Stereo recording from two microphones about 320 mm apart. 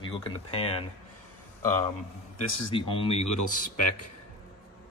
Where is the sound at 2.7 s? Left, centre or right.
Centre.